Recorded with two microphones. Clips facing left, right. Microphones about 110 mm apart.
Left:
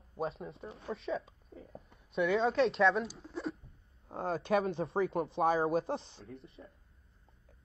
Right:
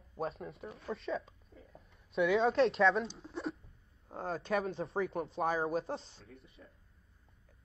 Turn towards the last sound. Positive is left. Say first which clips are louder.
# left 6 dB
turn(degrees=30)  # may be behind; listen again after turning